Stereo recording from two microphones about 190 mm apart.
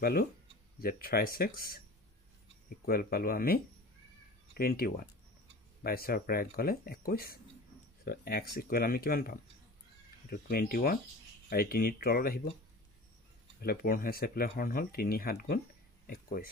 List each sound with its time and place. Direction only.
0.0 s speech: 55° left (ahead or behind)
2.8 s speech: 50° left (ahead or behind)
13.6 s speech: 50° left (ahead or behind)